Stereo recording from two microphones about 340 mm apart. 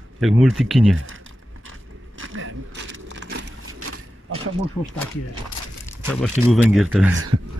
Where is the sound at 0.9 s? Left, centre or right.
Right.